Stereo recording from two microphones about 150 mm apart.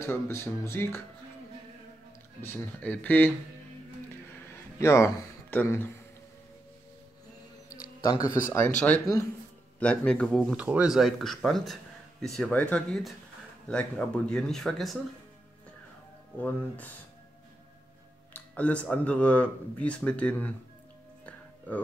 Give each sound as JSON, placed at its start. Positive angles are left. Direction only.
{"t": 0.0, "sound": "speech", "side_deg": 15}
{"t": 2.4, "sound": "speech", "side_deg": 15}
{"t": 4.7, "sound": "speech", "side_deg": 20}
{"t": 8.5, "sound": "speech", "side_deg": 15}
{"t": 10.5, "sound": "speech", "side_deg": -10}
{"t": 16.3, "sound": "speech", "side_deg": 10}
{"t": 18.3, "sound": "speech", "side_deg": 10}
{"t": 21.3, "sound": "music", "side_deg": 10}